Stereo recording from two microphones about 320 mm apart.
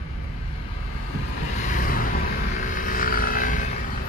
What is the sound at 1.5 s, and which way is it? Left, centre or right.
Vehicle, left.